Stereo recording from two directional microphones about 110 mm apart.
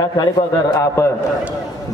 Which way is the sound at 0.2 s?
40° left (ahead or behind).